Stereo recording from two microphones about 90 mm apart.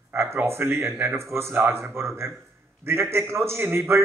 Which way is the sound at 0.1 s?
25° right (ahead or behind).